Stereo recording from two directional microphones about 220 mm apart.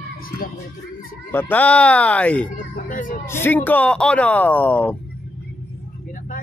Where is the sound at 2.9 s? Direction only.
40° left (ahead or behind).